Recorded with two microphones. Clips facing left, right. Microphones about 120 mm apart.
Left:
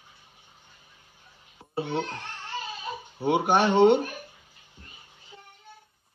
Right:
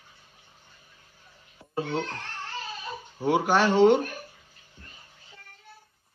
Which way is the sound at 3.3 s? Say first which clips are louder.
Even; 55° left (ahead or behind).